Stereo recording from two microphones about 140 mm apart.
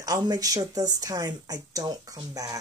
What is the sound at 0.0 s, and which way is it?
Speech, 25° right (ahead or behind).